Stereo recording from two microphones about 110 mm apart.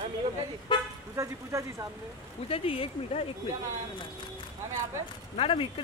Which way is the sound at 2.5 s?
60° left (ahead or behind).